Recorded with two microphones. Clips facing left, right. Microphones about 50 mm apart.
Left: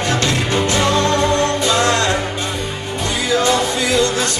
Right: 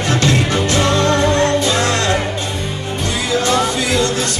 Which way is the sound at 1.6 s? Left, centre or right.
Left.